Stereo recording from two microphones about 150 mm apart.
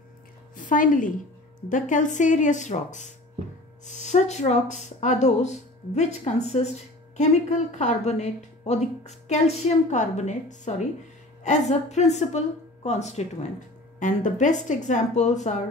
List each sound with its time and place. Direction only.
0.6 s a woman's voice: 60° left (ahead or behind)